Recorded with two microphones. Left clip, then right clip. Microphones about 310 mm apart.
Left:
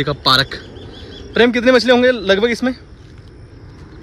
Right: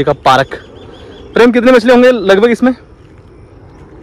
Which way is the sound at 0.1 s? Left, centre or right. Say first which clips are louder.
Right 5 dB; right.